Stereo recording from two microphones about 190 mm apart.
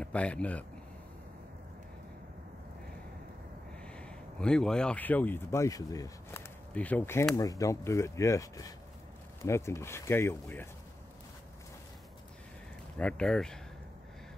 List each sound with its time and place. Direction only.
0.0 s speech: 5° left (ahead or behind)
3.8 s speech: 5° left (ahead or behind)
13.0 s speech: 5° left (ahead or behind)